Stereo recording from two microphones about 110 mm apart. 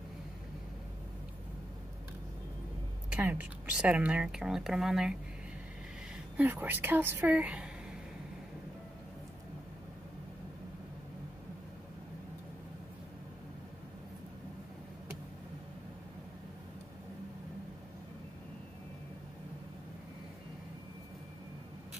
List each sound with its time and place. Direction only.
3.2 s speech: 15° right (ahead or behind)
6.3 s speech: 15° right (ahead or behind)